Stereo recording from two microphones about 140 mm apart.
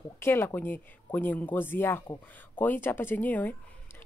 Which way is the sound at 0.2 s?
15° left (ahead or behind).